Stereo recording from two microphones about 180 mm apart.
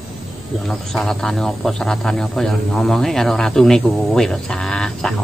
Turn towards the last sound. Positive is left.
turn(degrees=5)  # may be behind; listen again after turning